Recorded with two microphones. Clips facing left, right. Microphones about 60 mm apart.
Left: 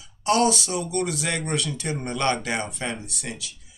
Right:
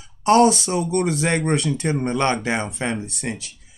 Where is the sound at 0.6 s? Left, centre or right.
Right.